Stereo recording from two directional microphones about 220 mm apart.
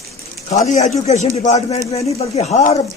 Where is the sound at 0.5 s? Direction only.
35° left (ahead or behind).